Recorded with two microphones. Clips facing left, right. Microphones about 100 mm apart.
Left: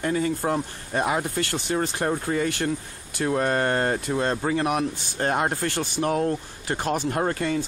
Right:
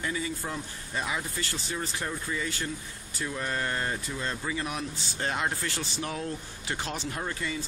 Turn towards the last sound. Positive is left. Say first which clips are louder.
# left 9 dB
turn(degrees=55)  # may be behind; listen again after turning